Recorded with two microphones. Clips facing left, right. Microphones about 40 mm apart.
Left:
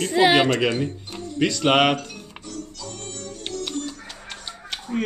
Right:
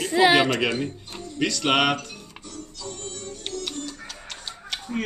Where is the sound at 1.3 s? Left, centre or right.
Centre.